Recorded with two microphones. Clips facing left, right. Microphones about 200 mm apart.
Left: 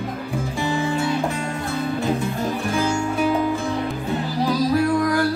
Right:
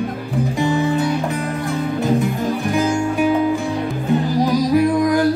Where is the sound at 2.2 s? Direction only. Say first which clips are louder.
Right 4 dB; 15° right (ahead or behind).